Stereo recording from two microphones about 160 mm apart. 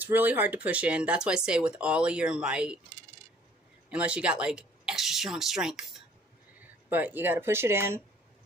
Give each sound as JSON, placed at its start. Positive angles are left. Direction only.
{"t": 0.0, "sound": "speech", "side_deg": -10}
{"t": 3.9, "sound": "speech", "side_deg": -5}